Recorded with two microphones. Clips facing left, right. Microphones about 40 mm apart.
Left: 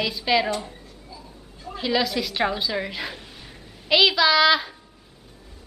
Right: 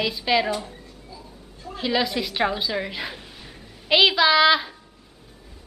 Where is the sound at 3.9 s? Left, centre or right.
Centre.